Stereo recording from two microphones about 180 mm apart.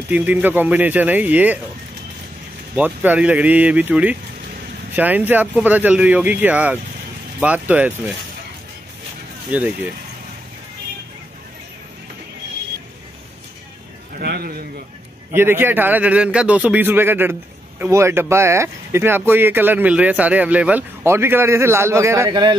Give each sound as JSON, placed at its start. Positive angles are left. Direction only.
{"t": 0.1, "sound": "a man's voice", "side_deg": -10}
{"t": 2.7, "sound": "a man's voice", "side_deg": -10}
{"t": 9.5, "sound": "a man's voice", "side_deg": -10}
{"t": 14.1, "sound": "a sound", "side_deg": -60}
{"t": 15.3, "sound": "a man's voice", "side_deg": -10}